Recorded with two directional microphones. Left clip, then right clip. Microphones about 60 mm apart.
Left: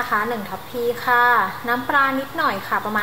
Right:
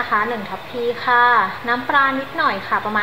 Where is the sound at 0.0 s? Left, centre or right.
Centre.